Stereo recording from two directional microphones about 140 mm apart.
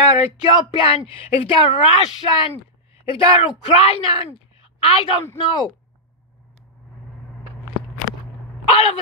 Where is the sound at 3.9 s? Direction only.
45° left (ahead or behind).